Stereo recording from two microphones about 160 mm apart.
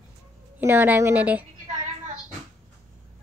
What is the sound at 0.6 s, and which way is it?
Speech, 10° right (ahead or behind).